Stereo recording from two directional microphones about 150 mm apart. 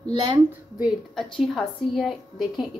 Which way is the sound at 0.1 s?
30° right (ahead or behind).